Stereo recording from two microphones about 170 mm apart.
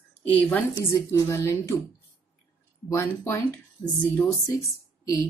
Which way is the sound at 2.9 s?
15° left (ahead or behind).